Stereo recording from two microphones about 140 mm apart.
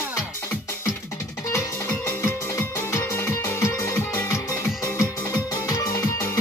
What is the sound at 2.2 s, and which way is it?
Music, 20° left (ahead or behind).